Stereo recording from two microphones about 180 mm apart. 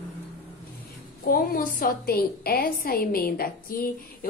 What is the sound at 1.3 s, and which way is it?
A woman's voice, 55° left (ahead or behind).